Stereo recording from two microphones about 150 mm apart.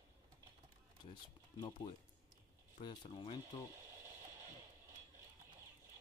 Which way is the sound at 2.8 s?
30° left (ahead or behind).